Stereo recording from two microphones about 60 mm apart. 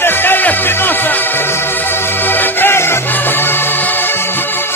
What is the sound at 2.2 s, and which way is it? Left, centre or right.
Music, left.